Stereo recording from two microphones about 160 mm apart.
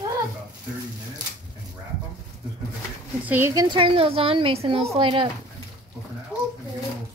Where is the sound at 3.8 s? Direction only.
35° right (ahead or behind).